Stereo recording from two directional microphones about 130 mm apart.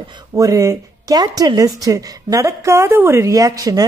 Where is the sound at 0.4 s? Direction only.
25° right (ahead or behind).